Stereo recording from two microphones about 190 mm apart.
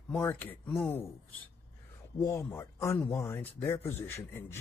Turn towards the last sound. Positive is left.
turn(degrees=10)  # may be behind; listen again after turning